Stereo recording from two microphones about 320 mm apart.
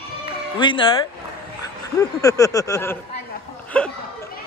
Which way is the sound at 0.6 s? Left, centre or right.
Centre.